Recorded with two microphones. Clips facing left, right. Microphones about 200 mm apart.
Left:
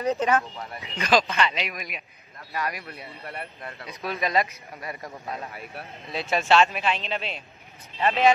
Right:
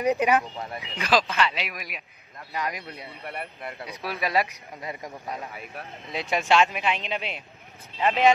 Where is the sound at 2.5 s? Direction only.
20° right (ahead or behind).